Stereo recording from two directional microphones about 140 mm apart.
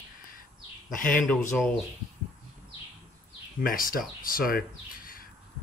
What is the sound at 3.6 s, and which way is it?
A man's voice, 90° left.